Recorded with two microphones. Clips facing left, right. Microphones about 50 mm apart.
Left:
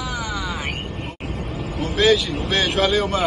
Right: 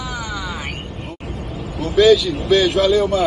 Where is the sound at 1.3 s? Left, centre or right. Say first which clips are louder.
Even; left.